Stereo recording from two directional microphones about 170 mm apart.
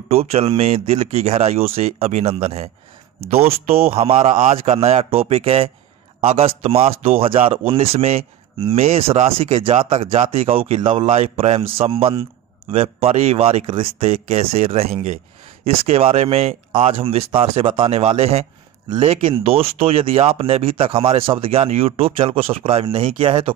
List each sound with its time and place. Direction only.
0.1 s speech: 35° right (ahead or behind)
3.9 s speech: 35° right (ahead or behind)